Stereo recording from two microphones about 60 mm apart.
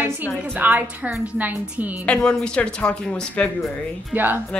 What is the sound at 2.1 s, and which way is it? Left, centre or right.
Speech, centre.